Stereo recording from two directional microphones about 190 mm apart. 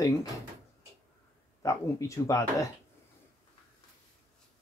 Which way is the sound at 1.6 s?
15° left (ahead or behind).